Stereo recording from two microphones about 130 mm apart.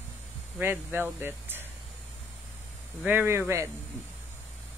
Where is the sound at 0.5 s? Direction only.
15° right (ahead or behind).